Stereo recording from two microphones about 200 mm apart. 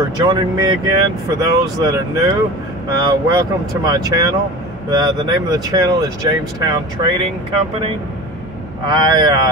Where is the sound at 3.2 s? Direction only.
15° right (ahead or behind).